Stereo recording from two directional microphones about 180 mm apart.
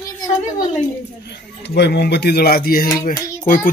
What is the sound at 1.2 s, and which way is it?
Speech, 70° left (ahead or behind).